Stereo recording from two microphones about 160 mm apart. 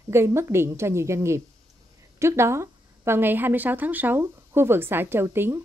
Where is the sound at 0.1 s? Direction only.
15° right (ahead or behind).